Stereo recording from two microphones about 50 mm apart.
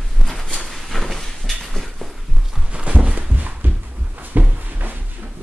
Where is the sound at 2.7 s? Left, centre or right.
Right.